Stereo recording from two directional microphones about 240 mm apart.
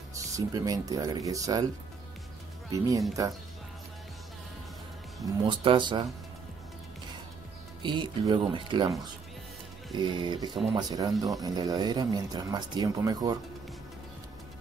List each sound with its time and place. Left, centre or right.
0.1 s speech: centre
5.2 s speech: right
7.8 s speech: centre